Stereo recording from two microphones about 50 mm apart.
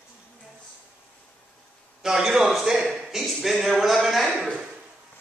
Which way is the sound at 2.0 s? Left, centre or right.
Centre.